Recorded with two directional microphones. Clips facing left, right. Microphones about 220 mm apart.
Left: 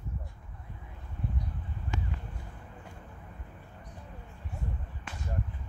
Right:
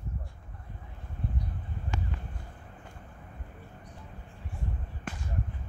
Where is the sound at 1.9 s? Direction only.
20° left (ahead or behind).